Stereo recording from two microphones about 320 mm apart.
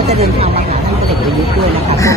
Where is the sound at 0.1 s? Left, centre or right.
Centre.